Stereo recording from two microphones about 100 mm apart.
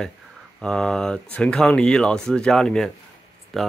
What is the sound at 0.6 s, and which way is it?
Speech, 5° left (ahead or behind).